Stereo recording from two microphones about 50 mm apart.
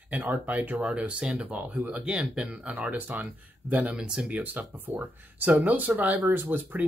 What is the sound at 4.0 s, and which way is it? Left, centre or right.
Speech, centre.